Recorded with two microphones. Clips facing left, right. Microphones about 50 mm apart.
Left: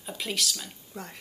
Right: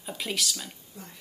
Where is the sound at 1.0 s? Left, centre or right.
Left.